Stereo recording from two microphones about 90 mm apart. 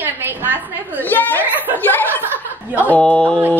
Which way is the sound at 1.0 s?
20° left (ahead or behind).